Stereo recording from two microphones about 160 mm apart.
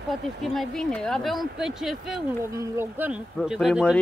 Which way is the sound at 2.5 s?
20° right (ahead or behind).